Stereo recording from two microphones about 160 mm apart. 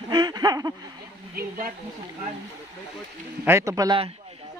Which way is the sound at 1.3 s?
65° right (ahead or behind).